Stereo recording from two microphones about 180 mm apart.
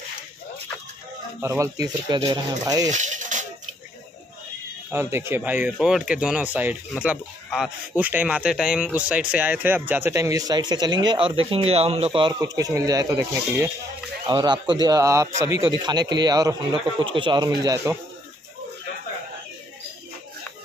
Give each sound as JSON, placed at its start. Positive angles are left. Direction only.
{"t": 1.4, "sound": "a man's voice", "side_deg": -15}
{"t": 2.9, "sound": "music", "side_deg": -45}
{"t": 4.9, "sound": "a man's voice", "side_deg": -15}